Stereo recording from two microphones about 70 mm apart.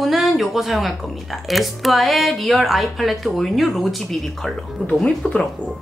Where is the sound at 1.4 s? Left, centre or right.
Centre.